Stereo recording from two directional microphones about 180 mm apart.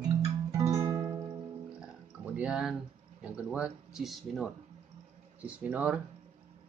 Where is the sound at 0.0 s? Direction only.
20° right (ahead or behind).